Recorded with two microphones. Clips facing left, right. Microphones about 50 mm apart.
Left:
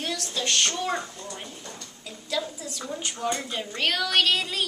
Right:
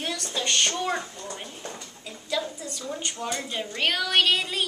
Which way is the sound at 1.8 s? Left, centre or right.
Centre.